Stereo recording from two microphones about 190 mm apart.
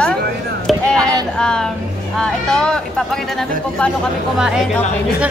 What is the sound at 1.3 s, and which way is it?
A man's voice, 5° left (ahead or behind).